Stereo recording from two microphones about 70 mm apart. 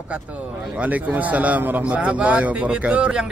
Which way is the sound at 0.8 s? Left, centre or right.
Right.